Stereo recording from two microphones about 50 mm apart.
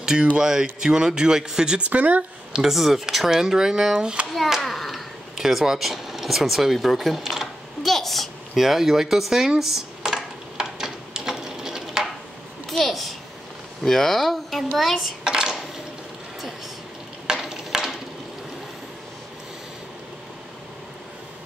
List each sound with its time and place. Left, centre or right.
0.0 s speech: centre
1.8 s speech: right
2.5 s speech: centre
4.3 s a child's voice: centre
8.5 s speech: centre
9.6 s a sound: centre
12.6 s babbling: centre
13.8 s a child's voice: centre
15.2 s dishes: centre
17.3 s frying: centre